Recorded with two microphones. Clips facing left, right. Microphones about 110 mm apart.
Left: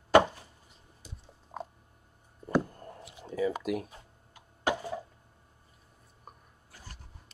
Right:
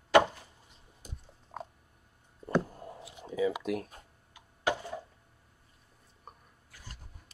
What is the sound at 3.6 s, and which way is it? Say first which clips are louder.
Speech: left 1 dB; 5° left (ahead or behind).